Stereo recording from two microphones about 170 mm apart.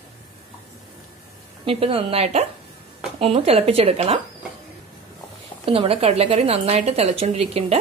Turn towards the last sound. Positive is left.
turn(degrees=-35)  # may be behind; listen again after turning